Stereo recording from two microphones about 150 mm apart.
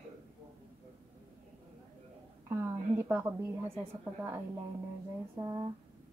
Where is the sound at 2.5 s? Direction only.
20° right (ahead or behind).